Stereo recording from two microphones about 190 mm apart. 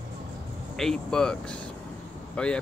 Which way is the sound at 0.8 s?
5° left (ahead or behind).